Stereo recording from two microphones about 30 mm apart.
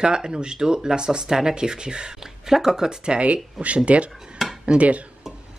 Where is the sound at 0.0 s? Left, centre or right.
Right.